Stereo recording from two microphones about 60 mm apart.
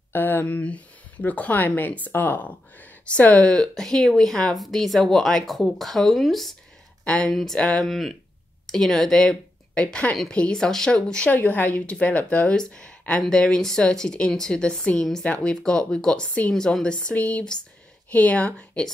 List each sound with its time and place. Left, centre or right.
0.1 s speech: left; by 6.5 s centre
7.1 s a woman's voice: centre
11.2 s a woman's voice: left